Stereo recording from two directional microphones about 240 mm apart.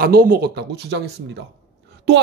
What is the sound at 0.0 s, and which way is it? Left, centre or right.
Speech, right.